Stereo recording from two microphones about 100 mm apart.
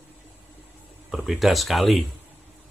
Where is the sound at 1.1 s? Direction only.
5° right (ahead or behind).